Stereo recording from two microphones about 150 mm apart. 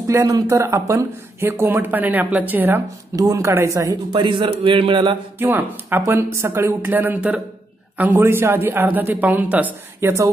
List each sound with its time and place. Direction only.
0.0 s a man's voice: 20° right (ahead or behind)
5.4 s speech: 15° right (ahead or behind)